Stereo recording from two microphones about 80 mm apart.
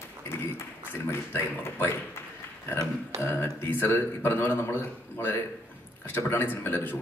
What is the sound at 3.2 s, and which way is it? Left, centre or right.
Speech, left.